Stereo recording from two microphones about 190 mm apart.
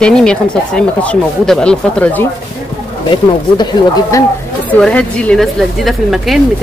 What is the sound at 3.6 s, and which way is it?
Speech, 20° left (ahead or behind).